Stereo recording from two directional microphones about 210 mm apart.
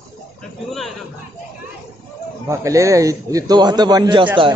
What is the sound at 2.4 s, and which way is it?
A man's voice, 15° right (ahead or behind).